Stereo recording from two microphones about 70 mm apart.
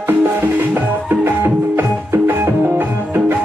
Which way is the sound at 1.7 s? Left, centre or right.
Right.